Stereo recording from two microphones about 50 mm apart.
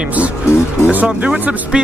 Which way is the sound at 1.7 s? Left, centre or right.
Centre.